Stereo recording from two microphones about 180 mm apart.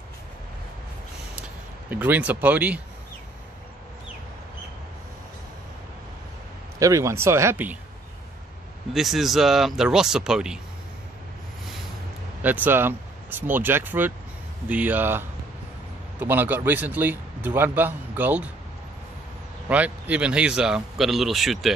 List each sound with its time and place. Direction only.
1.9 s a man's voice: 10° right (ahead or behind)
6.8 s a man's voice: 15° right (ahead or behind)
8.9 s speech: centre (ahead or behind)
12.4 s a man's voice: 10° right (ahead or behind)
19.7 s speech: 10° right (ahead or behind)